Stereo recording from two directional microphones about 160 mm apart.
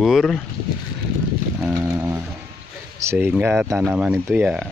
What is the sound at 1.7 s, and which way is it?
Speech, 15° right (ahead or behind).